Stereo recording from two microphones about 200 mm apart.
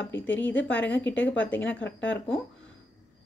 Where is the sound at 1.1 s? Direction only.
65° left (ahead or behind).